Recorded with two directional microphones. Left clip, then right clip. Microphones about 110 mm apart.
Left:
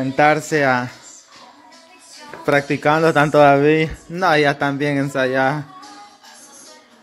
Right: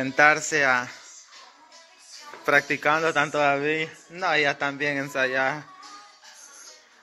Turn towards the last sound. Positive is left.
turn(degrees=20)  # may be behind; listen again after turning